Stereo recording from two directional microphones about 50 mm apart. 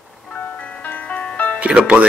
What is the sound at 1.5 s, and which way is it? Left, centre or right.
Speech, right.